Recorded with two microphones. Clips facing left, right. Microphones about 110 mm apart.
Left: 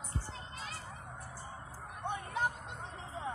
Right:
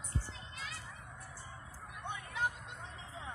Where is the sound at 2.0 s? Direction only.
40° left (ahead or behind).